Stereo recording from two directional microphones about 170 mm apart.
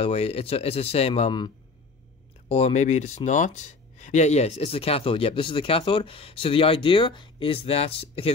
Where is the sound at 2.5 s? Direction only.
40° left (ahead or behind).